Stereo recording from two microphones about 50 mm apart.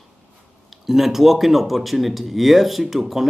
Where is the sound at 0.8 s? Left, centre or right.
Centre.